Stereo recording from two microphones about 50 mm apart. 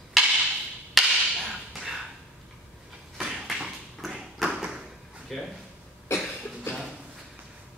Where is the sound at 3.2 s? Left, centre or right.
Centre.